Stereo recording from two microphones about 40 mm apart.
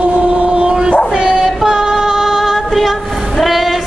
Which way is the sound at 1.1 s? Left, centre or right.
Right.